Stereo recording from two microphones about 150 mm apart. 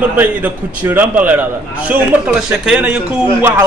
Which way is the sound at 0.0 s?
10° right (ahead or behind).